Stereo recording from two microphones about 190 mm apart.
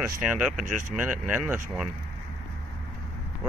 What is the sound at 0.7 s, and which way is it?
Speech, 40° right (ahead or behind).